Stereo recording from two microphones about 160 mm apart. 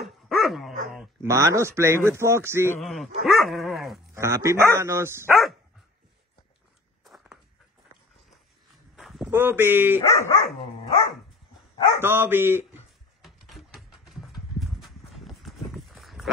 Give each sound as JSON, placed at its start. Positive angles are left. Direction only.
{"t": 0.0, "sound": "dog", "side_deg": 0}
{"t": 1.2, "sound": "speech", "side_deg": -20}
{"t": 2.8, "sound": "dog", "side_deg": 0}
{"t": 4.1, "sound": "speech", "side_deg": -20}
{"t": 5.3, "sound": "dog", "side_deg": 0}
{"t": 8.9, "sound": "walk", "side_deg": 0}
{"t": 9.3, "sound": "speech", "side_deg": -15}
{"t": 10.0, "sound": "speech", "side_deg": 20}
{"t": 10.9, "sound": "dog", "side_deg": 35}
{"t": 12.0, "sound": "speech", "side_deg": -15}
{"t": 13.2, "sound": "horse", "side_deg": 0}